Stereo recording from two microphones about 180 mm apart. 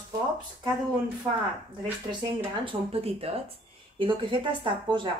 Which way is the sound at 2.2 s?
30° right (ahead or behind).